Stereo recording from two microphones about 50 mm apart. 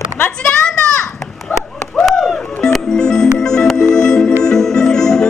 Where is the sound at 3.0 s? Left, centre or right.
Centre.